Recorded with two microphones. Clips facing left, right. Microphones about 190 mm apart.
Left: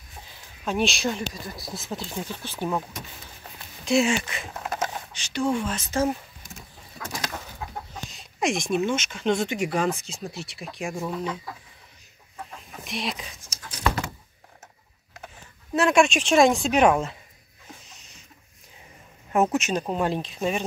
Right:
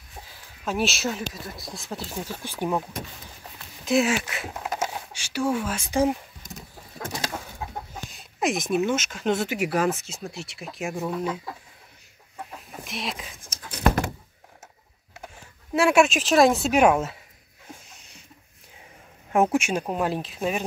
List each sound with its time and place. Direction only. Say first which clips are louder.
0.7 s speech: left 1 dB; 5° right (ahead or behind)
3.5 s speech: even; centre (ahead or behind)
12.5 s chicken: left 2 dB; centre (ahead or behind)
13.4 s a sound: right 6 dB; 55° right (ahead or behind)
15.1 s speech: right 1 dB; 10° right (ahead or behind)
19.3 s speech: right 1 dB; 10° right (ahead or behind)